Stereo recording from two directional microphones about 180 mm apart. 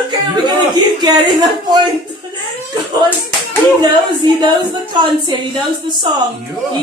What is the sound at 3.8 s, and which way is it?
A woman's voice, 25° right (ahead or behind).